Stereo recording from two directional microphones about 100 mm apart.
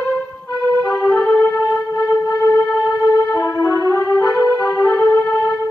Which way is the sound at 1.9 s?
40° left (ahead or behind).